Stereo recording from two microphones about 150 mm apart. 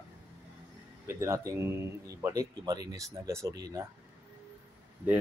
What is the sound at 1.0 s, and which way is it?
Speech, 20° right (ahead or behind).